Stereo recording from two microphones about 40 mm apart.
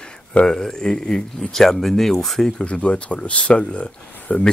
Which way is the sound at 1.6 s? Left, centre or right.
Centre.